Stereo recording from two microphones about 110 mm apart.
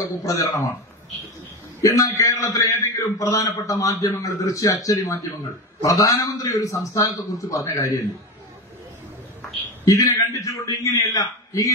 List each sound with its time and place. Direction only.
0.2 s a man's voice: 30° left (ahead or behind)
1.8 s a man's voice: 30° left (ahead or behind)
9.8 s a man's voice: 30° left (ahead or behind)